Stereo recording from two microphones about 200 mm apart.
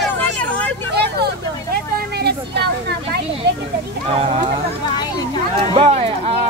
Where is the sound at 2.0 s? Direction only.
55° right (ahead or behind).